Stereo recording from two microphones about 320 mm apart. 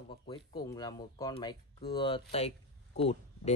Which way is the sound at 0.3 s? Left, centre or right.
Centre.